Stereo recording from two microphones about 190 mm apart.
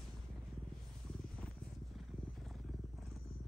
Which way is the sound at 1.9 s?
Centre (ahead or behind).